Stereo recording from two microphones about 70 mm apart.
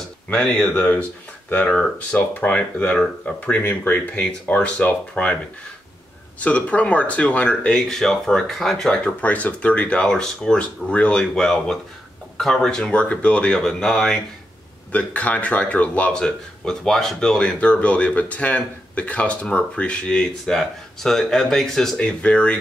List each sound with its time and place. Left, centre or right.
0.3 s speech: centre
6.4 s speech: centre
9.0 s speech: left
14.9 s speech: left